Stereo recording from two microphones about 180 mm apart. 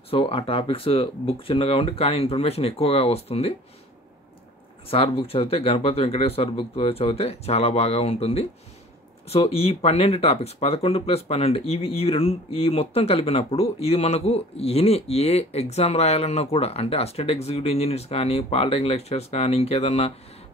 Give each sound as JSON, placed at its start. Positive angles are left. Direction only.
{"t": 0.1, "sound": "speech", "side_deg": 30}
{"t": 4.8, "sound": "speech", "side_deg": 30}